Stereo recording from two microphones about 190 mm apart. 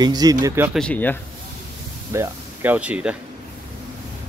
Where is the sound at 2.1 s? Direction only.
10° right (ahead or behind).